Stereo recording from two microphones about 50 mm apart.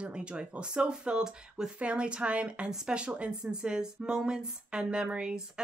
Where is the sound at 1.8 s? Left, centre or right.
Right.